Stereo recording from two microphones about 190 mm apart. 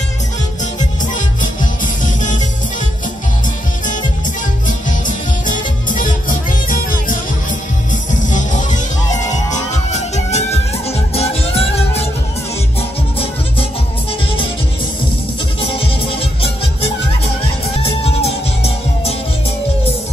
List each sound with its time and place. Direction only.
0.7 s music: 40° left (ahead or behind)
4.6 s music: 40° left (ahead or behind)
8.3 s music: 40° left (ahead or behind)
15.7 s music: 30° left (ahead or behind)
17.8 s music: 30° left (ahead or behind)